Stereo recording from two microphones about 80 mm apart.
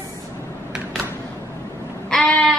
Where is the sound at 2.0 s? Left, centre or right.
Centre.